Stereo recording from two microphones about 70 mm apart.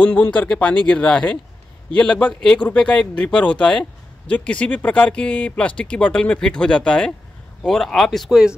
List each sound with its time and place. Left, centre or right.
0.0 s speech: left; by 8.5 s centre